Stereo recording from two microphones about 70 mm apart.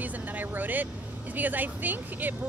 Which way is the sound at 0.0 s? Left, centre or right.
Right.